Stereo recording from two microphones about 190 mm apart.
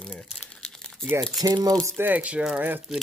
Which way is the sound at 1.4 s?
20° right (ahead or behind).